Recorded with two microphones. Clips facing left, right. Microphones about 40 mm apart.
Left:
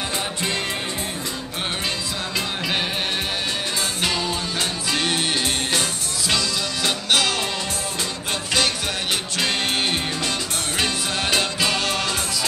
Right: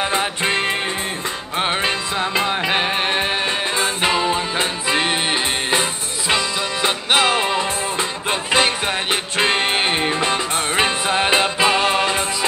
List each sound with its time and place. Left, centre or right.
0.1 s music: right
2.3 s music: right